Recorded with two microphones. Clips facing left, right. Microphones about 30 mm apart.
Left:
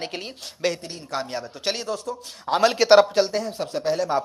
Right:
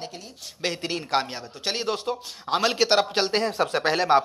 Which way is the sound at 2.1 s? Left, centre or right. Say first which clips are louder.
Right 3 dB; right.